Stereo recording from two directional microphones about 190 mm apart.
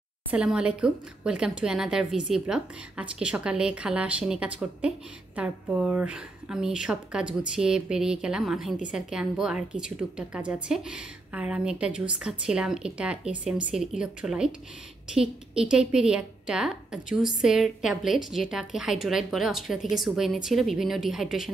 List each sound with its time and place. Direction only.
0.3 s a woman's voice: 5° right (ahead or behind)